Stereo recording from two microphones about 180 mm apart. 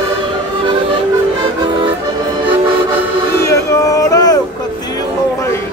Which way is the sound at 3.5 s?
15° left (ahead or behind).